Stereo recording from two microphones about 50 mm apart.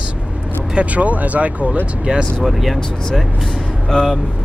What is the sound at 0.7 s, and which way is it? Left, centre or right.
Speech, right.